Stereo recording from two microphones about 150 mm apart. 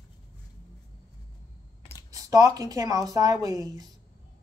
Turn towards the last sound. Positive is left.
turn(degrees=-25)  # may be behind; listen again after turning